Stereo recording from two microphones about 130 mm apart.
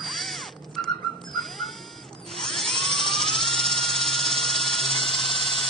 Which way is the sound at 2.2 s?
Centre (ahead or behind).